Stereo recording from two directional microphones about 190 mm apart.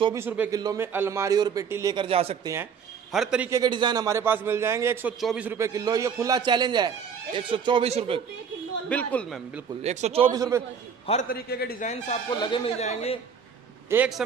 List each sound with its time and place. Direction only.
0.1 s a man's voice: 10° right (ahead or behind); by 2.3 s 30° right (ahead or behind)
2.4 s a man's voice: 15° right (ahead or behind)
3.1 s a man's voice: 5° right (ahead or behind); by 8.2 s 30° right (ahead or behind)
8.8 s a woman's voice: 5° left (ahead or behind)
9.8 s a man's voice: 35° right (ahead or behind)
10.3 s a man's voice: 15° right (ahead or behind)
11.2 s a man's voice: 55° left (ahead or behind)
11.8 s a man's voice: 35° left (ahead or behind)
12.4 s speech: 25° left (ahead or behind)
13.8 s a man's voice: 5° right (ahead or behind)